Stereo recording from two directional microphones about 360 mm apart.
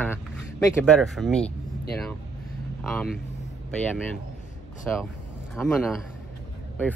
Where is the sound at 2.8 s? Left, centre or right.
Centre.